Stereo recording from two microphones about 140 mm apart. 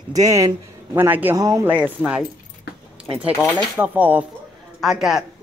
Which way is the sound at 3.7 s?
10° right (ahead or behind).